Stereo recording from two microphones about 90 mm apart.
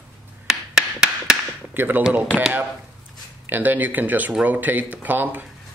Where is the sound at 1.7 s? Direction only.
20° right (ahead or behind).